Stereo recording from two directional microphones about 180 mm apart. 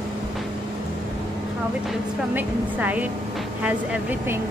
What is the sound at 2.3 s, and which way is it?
A woman's voice, 10° right (ahead or behind).